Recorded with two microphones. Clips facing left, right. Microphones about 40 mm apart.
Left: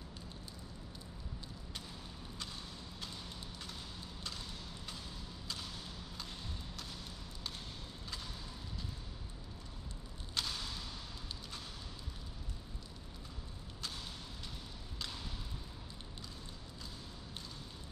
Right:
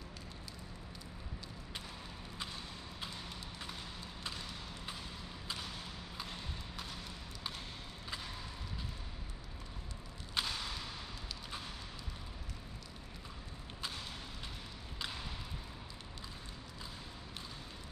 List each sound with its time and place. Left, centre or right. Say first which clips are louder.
10.3 s whip: right 2 dB; right